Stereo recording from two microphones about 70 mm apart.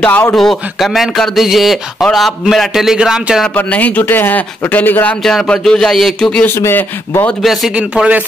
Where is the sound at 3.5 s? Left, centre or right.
Left.